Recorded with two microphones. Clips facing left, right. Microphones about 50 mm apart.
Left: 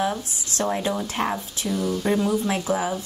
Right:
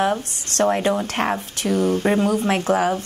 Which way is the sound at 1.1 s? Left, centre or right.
Right.